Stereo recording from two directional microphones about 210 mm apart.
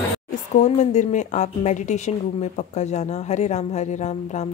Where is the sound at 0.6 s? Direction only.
35° left (ahead or behind).